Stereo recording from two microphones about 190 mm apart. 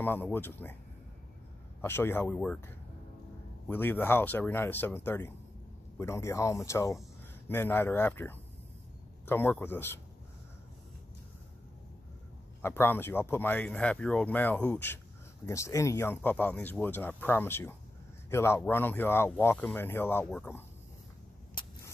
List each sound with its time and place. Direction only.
0.0 s speech: 10° left (ahead or behind)
1.8 s speech: 10° left (ahead or behind)
3.6 s speech: 10° left (ahead or behind)
12.6 s speech: 10° left (ahead or behind)
21.6 s vehicle: 25° left (ahead or behind)